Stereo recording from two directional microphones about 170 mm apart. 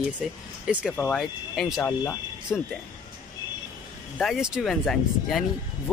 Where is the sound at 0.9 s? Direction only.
10° left (ahead or behind).